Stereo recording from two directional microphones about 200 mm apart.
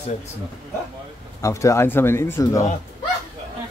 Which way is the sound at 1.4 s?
15° left (ahead or behind).